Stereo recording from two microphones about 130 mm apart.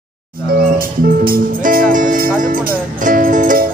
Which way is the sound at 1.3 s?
90° right.